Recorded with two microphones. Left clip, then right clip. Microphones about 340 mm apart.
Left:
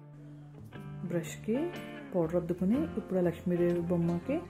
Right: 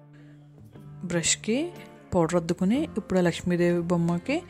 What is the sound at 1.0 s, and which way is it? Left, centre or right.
Speech, right.